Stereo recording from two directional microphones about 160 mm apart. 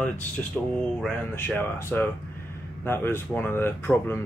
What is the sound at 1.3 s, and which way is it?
Speech, 15° left (ahead or behind).